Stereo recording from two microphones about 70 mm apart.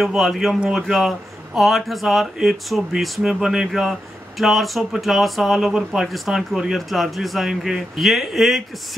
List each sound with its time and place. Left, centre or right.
0.0 s speech: centre